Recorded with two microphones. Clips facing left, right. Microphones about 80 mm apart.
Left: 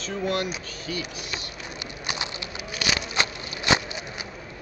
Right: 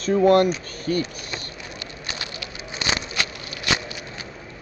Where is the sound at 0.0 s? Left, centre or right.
Right.